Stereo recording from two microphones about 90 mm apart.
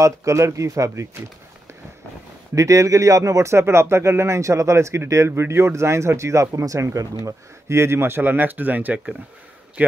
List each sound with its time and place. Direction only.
0.0 s speech: 35° right (ahead or behind)
2.5 s a man's voice: 35° right (ahead or behind); by 9.9 s 20° right (ahead or behind)